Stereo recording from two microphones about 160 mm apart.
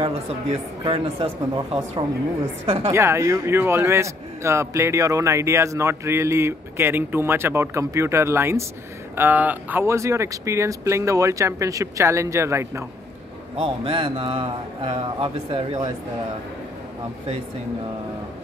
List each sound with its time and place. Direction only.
0.0 s speech: 35° right (ahead or behind)
2.9 s speech: 15° right (ahead or behind)
13.6 s speech: 35° right (ahead or behind)